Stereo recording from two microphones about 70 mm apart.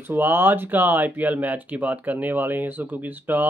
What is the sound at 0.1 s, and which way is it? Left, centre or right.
Speech, right.